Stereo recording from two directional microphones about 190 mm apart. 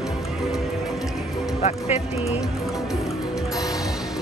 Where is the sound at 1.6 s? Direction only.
35° left (ahead or behind).